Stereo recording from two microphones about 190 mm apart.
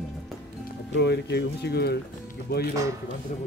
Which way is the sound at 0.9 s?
60° left (ahead or behind).